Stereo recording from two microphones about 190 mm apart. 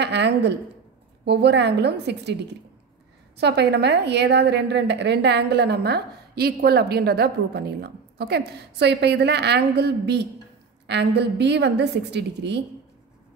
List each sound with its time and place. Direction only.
0.0 s a woman's voice: 65° right (ahead or behind)
3.3 s a woman's voice: 60° right (ahead or behind)